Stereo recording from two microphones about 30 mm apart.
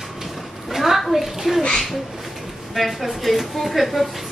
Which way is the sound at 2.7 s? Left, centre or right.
Centre.